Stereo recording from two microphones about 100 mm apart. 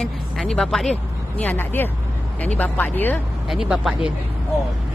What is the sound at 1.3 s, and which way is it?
Speech, 20° left (ahead or behind).